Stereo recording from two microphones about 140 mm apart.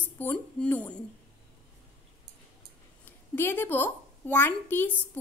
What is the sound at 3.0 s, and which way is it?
A woman's voice, 15° left (ahead or behind).